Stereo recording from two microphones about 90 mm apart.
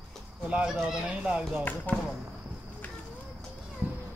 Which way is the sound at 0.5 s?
10° right (ahead or behind).